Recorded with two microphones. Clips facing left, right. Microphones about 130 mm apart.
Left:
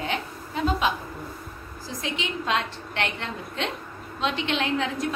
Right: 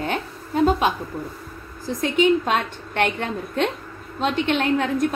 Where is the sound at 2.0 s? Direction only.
50° right (ahead or behind).